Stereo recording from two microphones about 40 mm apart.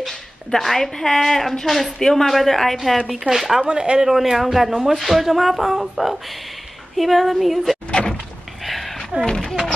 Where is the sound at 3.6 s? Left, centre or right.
Right.